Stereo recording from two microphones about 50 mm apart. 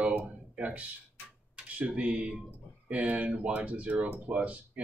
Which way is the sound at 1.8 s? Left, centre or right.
Right.